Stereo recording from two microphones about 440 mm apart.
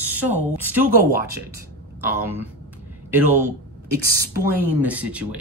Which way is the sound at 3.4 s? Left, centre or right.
Right.